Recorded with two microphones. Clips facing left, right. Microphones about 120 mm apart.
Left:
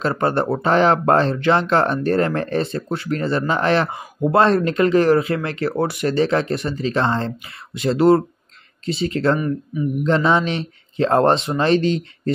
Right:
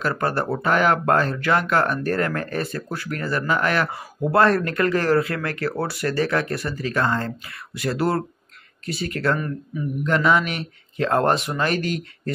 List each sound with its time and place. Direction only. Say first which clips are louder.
0.0 s speech: left 4 dB; 25° left (ahead or behind)